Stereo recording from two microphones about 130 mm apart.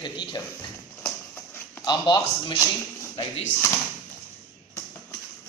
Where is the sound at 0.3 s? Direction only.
30° left (ahead or behind).